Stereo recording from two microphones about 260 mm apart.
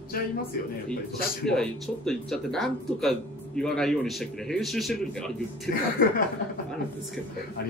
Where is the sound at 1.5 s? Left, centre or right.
Centre.